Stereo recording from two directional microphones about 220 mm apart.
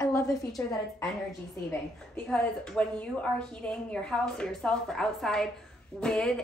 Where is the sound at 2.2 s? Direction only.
5° left (ahead or behind).